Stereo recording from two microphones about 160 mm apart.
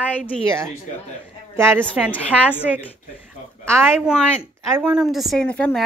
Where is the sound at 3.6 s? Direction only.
15° right (ahead or behind).